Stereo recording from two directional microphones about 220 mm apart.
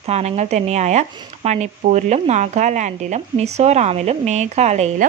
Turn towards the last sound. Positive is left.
turn(degrees=-30)  # may be behind; listen again after turning